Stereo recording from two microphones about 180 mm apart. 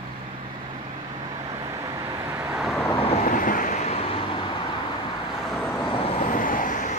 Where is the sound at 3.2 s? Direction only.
50° left (ahead or behind).